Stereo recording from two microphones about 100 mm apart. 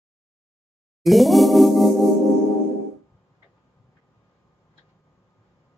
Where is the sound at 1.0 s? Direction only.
Centre (ahead or behind).